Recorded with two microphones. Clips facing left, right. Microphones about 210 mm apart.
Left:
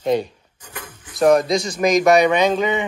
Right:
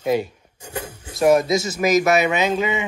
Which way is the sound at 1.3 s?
5° right (ahead or behind).